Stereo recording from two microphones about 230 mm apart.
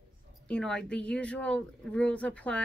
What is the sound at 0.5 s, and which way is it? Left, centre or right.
Speech, centre.